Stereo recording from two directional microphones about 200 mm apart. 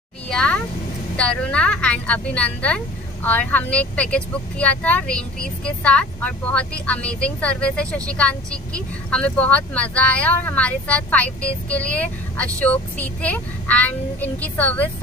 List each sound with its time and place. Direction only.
0.3 s a woman's voice: 5° left (ahead or behind)